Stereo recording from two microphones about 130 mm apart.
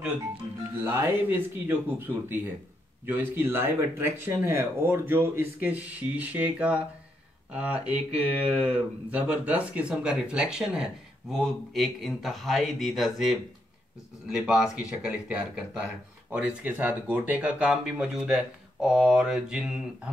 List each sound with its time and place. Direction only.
0.0 s speech: 15° right (ahead or behind)
3.1 s speech: 15° right (ahead or behind)